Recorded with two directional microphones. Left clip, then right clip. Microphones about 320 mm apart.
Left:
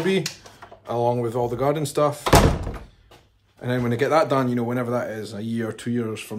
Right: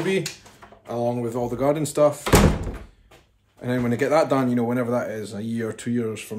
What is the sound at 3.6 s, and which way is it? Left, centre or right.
A man's voice, centre.